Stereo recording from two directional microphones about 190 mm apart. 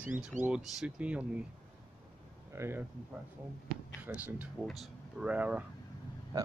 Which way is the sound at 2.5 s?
15° right (ahead or behind).